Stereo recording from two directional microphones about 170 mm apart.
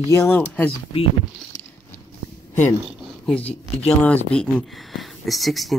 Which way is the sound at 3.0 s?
Centre (ahead or behind).